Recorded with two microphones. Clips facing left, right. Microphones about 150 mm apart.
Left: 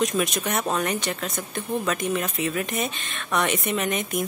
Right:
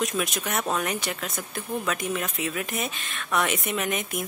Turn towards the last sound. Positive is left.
turn(degrees=-5)  # may be behind; listen again after turning